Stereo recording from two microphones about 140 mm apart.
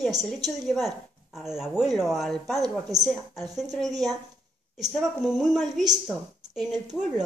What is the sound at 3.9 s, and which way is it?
Speech, 25° right (ahead or behind).